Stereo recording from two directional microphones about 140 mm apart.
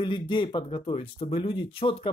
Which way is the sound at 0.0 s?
35° left (ahead or behind).